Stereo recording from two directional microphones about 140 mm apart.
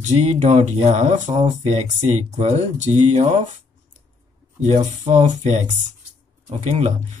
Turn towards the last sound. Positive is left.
turn(degrees=-55)  # may be behind; listen again after turning